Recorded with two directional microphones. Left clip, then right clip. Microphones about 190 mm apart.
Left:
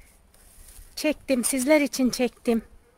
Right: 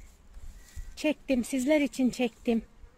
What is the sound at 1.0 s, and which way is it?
Speech, 15° left (ahead or behind).